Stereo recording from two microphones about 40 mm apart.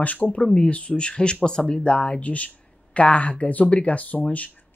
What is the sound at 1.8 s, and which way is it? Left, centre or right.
Speech, left.